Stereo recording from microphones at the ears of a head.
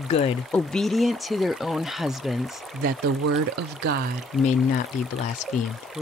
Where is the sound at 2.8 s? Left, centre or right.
Right.